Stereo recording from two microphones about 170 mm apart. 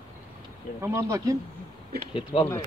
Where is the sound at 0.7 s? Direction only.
15° right (ahead or behind).